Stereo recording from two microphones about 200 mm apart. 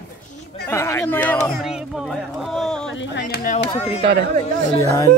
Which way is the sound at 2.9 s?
65° left (ahead or behind).